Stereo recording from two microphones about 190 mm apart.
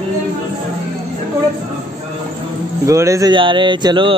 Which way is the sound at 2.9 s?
15° right (ahead or behind).